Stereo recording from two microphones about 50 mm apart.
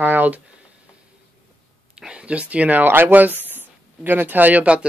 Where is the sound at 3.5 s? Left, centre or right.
Right.